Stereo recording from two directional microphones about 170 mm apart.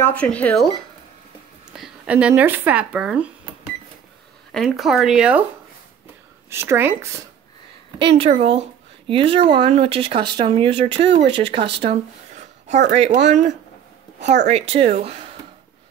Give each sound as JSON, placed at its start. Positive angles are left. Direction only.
{"t": 0.0, "sound": "speech", "side_deg": 10}
{"t": 1.7, "sound": "speech", "side_deg": -5}
{"t": 4.5, "sound": "speech", "side_deg": 0}
{"t": 6.5, "sound": "speech", "side_deg": -15}
{"t": 8.0, "sound": "speech", "side_deg": -30}
{"t": 12.4, "sound": "a sound", "side_deg": -45}
{"t": 12.9, "sound": "speech", "side_deg": -40}